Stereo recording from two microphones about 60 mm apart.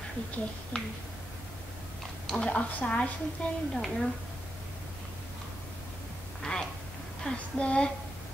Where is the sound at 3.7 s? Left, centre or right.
Centre.